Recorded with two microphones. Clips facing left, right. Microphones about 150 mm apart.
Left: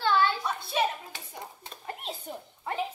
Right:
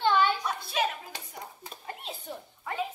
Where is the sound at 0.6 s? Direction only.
30° left (ahead or behind).